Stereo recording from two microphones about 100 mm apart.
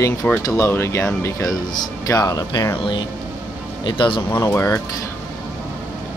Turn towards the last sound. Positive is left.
turn(degrees=30)  # may be behind; listen again after turning